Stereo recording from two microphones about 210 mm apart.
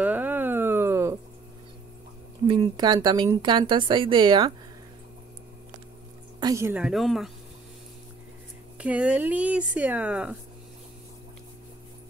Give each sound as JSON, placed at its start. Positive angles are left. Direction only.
{"t": 0.0, "sound": "a sound", "side_deg": -10}
{"t": 2.4, "sound": "speech", "side_deg": -20}
{"t": 6.4, "sound": "speech", "side_deg": -15}
{"t": 8.7, "sound": "speech", "side_deg": -5}